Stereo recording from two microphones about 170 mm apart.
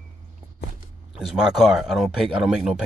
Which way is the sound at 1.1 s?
5° right (ahead or behind).